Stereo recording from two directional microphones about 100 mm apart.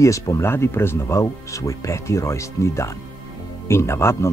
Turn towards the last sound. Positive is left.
turn(degrees=25)  # may be behind; listen again after turning